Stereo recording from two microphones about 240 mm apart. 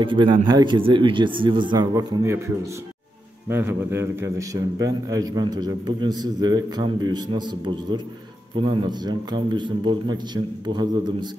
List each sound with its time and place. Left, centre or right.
0.0 s a man's voice: centre